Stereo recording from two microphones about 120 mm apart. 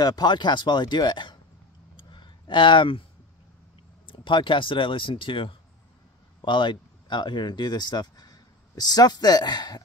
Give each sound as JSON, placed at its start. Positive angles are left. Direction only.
{"t": 0.0, "sound": "speech", "side_deg": 35}
{"t": 2.0, "sound": "a sound", "side_deg": 40}
{"t": 4.1, "sound": "speech", "side_deg": 45}